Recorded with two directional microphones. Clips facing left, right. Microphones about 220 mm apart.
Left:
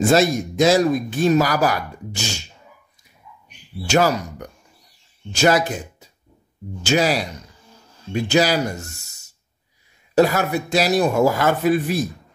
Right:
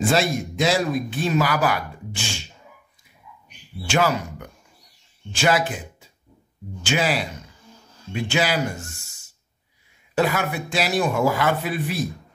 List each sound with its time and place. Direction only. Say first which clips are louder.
0.0 s speech: left 5 dB; 45° left (ahead or behind)
3.8 s a man's voice: left 3 dB; 40° left (ahead or behind)
10.1 s a man's voice: left 5 dB; 40° left (ahead or behind)